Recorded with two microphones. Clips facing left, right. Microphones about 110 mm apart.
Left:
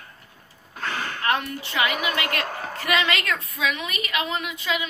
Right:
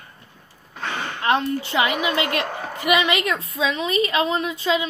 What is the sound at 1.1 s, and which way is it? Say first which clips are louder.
A woman's voice: right 6 dB; 25° right (ahead or behind).